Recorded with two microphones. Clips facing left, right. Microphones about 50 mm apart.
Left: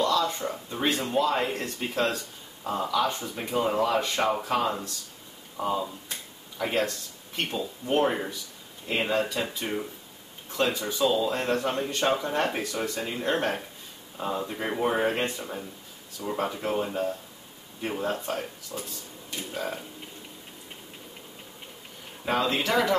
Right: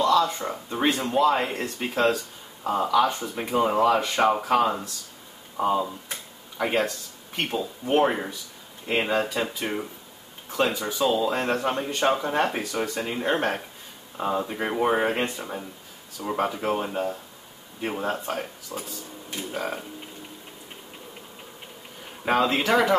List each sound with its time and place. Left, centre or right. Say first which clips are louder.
0.1 s a man's voice: right 4 dB; centre
22.2 s speech: right 4 dB; right